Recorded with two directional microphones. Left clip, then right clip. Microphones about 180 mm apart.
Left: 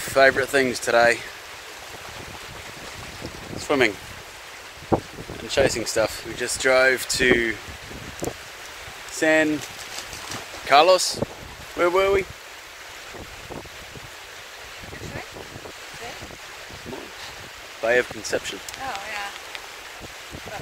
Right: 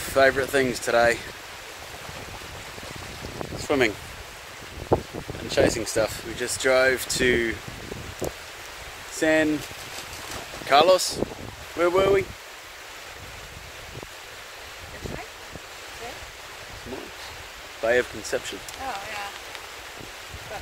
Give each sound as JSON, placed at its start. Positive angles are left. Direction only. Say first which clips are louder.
{"t": 0.1, "sound": "speech", "louder": "left 3 dB", "side_deg": 20}
{"t": 3.6, "sound": "speech", "louder": "left 2 dB", "side_deg": 15}
{"t": 5.5, "sound": "speech", "louder": "left 1 dB", "side_deg": 10}
{"t": 9.1, "sound": "speech", "louder": "left 2 dB", "side_deg": 10}
{"t": 10.7, "sound": "speech", "louder": "left 2 dB", "side_deg": 15}
{"t": 17.8, "sound": "speech", "louder": "left 2 dB", "side_deg": 5}